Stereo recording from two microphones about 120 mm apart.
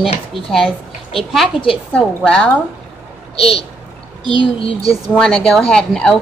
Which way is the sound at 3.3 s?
55° left (ahead or behind).